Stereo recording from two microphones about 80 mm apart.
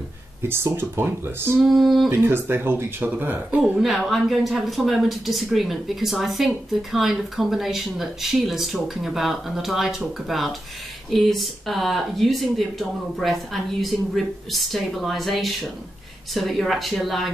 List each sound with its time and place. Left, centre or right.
0.4 s speech: right
1.6 s a woman's voice: centre
2.0 s speech: right
3.7 s a woman's voice: centre